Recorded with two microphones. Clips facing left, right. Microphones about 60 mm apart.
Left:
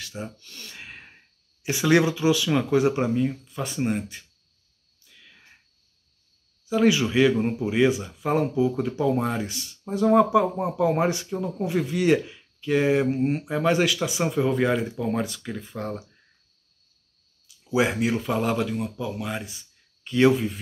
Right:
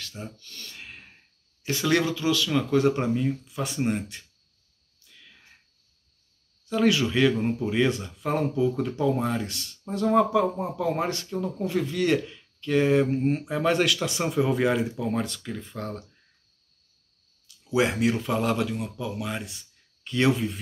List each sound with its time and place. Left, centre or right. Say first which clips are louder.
0.0 s speech: left 4 dB; centre
5.0 s a sound: even; centre
6.6 s speech: left 2 dB; centre
17.5 s speech: left 1 dB; centre